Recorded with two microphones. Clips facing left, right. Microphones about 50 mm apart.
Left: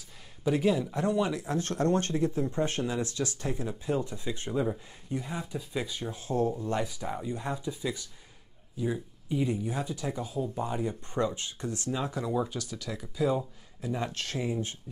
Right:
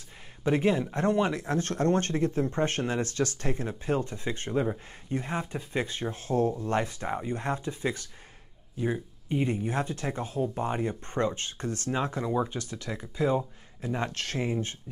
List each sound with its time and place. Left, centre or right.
0.4 s speech: right
12.2 s speech: right
12.5 s speech: right